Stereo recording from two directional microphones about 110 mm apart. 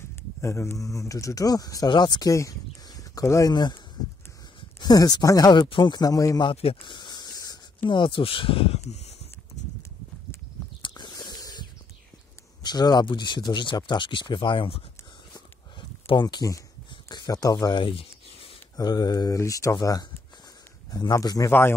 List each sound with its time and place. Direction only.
0.1 s speech: 25° left (ahead or behind)
3.5 s speech: 40° left (ahead or behind)
6.5 s a sound: 60° left (ahead or behind); by 7.5 s 35° left (ahead or behind)
7.8 s speech: 50° left (ahead or behind)
10.8 s a sound: 40° left (ahead or behind)
12.6 s speech: 35° left (ahead or behind)
16.2 s speech: 40° left (ahead or behind)
16.9 s a sound: 40° left (ahead or behind)
18.8 s speech: 35° left (ahead or behind)
21.5 s speech: 20° left (ahead or behind)